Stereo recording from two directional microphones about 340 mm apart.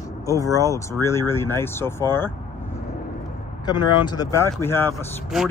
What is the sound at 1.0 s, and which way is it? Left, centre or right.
Speech, centre.